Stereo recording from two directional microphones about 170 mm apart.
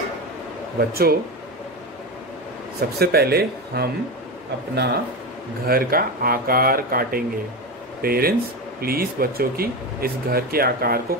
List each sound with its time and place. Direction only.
0.7 s speech: 65° right (ahead or behind)
3.0 s speech: 65° right (ahead or behind)
5.7 s speech: 60° right (ahead or behind)